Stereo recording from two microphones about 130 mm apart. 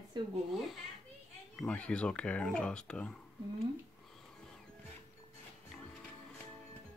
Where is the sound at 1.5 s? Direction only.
10° left (ahead or behind).